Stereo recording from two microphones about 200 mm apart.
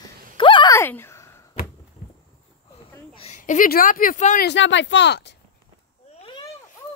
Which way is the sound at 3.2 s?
35° left (ahead or behind).